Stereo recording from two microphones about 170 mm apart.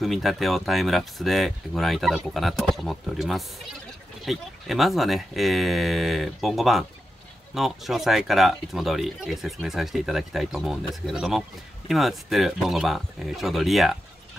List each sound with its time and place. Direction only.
0.0 s speech: centre (ahead or behind)